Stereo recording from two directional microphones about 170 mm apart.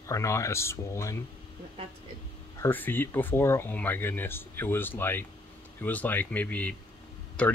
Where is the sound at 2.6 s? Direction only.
10° left (ahead or behind).